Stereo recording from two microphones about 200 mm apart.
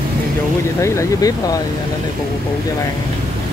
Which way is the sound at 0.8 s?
15° left (ahead or behind).